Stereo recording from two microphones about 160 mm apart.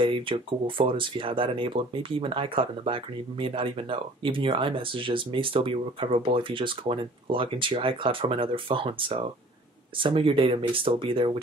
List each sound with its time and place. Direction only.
0.0 s speech: 30° right (ahead or behind)